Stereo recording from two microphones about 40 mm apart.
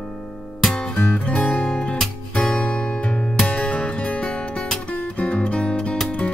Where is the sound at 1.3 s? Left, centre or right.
Left.